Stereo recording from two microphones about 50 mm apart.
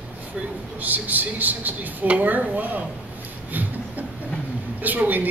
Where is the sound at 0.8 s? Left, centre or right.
Right.